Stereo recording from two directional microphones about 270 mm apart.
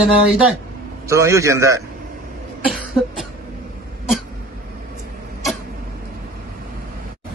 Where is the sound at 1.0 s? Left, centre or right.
Centre.